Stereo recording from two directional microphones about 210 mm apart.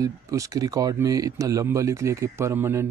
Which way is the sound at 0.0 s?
15° right (ahead or behind).